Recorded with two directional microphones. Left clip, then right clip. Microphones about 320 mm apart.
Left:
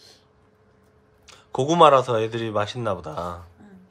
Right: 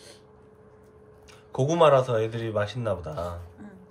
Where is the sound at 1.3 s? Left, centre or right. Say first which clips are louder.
Left 4 dB; centre.